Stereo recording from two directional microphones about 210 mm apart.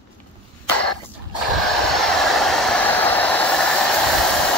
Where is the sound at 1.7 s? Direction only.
Centre (ahead or behind).